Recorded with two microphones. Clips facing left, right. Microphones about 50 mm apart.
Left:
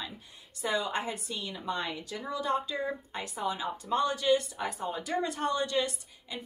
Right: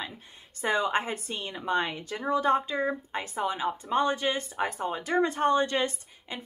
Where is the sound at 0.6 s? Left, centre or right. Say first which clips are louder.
Right 5 dB; right.